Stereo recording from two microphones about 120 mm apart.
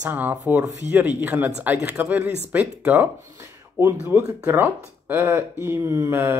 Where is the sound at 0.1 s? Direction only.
15° right (ahead or behind).